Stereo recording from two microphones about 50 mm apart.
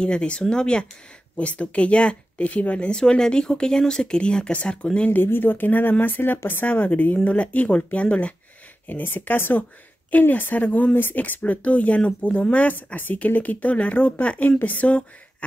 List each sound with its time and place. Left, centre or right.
0.0 s a woman's voice: centre
1.4 s a woman's voice: left
5.1 s speech: left
6.7 s a woman's voice: left
8.8 s a woman's voice: left